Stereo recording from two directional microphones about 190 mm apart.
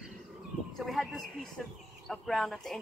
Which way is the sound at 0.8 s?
Centre (ahead or behind).